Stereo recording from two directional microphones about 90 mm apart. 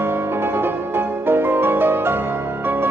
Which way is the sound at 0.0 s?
25° right (ahead or behind).